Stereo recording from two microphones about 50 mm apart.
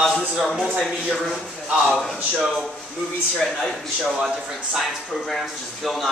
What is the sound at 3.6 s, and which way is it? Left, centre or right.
Speech, centre.